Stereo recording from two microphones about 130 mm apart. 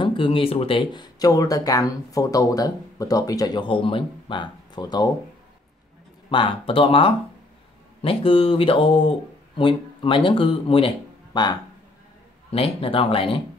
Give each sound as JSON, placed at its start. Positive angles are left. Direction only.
{"t": 0.0, "sound": "speech", "side_deg": 40}
{"t": 6.3, "sound": "speech", "side_deg": 40}
{"t": 11.3, "sound": "speech", "side_deg": 35}
{"t": 12.4, "sound": "speech", "side_deg": 45}